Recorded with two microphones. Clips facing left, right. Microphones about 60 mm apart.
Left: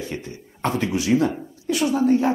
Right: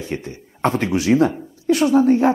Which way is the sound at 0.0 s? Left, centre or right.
Right.